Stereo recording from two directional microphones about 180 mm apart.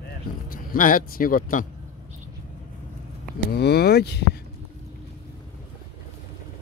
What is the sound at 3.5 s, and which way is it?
Speech, 65° left (ahead or behind).